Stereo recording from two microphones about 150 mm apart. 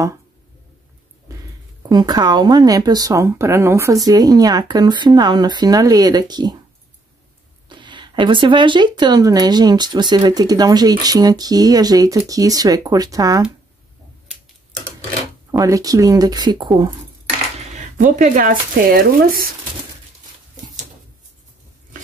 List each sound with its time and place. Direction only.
1.8 s speech: 25° right (ahead or behind)
7.7 s speech: 30° right (ahead or behind)
15.5 s speech: 20° right (ahead or behind)
17.7 s speech: 60° right (ahead or behind); by 19.5 s 75° right (ahead or behind)